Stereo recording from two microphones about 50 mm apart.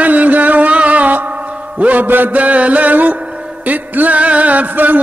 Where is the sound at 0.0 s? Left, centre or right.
Right.